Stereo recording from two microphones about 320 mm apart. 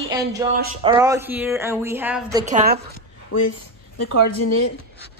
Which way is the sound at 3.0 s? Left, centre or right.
Left.